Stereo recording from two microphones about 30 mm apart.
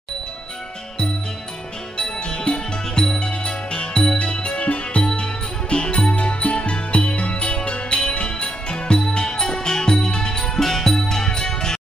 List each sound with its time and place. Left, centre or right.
2.0 s music: left
9.2 s music: left